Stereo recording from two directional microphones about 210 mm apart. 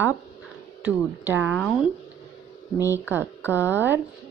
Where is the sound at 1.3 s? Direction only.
5° left (ahead or behind).